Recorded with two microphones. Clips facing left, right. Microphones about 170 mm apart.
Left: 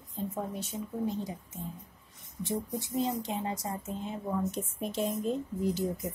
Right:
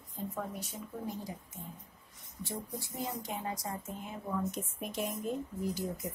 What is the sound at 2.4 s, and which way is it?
A woman's voice, 20° left (ahead or behind).